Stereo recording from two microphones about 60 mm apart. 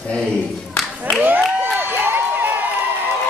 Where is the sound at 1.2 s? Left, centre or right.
Right.